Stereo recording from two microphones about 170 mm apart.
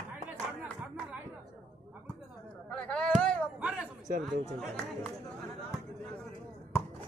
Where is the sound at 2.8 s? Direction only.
5° left (ahead or behind).